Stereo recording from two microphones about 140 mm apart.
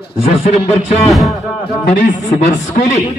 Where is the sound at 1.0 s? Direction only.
Centre (ahead or behind).